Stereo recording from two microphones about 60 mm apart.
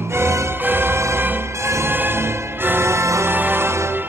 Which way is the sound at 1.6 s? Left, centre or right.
Right.